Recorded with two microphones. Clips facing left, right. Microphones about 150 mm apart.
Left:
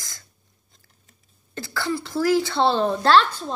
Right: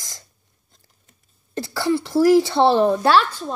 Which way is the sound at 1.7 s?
25° right (ahead or behind).